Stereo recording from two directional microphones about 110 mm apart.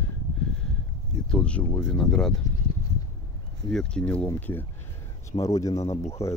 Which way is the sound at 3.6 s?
5° left (ahead or behind).